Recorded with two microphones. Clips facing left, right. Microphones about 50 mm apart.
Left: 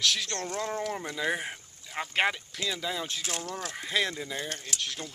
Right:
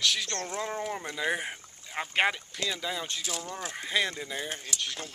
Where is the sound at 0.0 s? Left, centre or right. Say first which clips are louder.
Even; centre.